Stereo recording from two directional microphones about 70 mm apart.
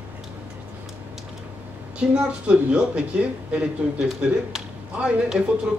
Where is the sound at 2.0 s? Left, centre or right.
Centre.